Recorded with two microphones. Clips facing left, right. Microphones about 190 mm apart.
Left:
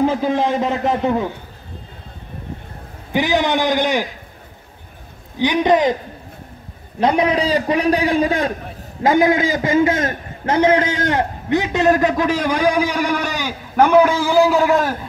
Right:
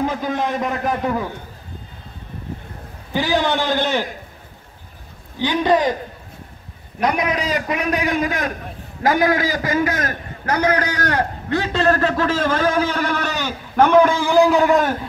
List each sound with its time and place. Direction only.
0.0 s a man's voice: 30° left (ahead or behind)
3.1 s a man's voice: 20° left (ahead or behind)
5.4 s a man's voice: 20° left (ahead or behind)
7.0 s a man's voice: 30° left (ahead or behind); by 15.0 s centre (ahead or behind)